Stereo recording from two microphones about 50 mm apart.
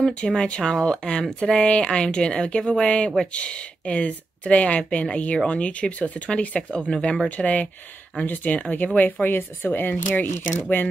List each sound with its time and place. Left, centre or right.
0.0 s a woman's voice: centre
7.2 s speech: left
8.7 s speech: left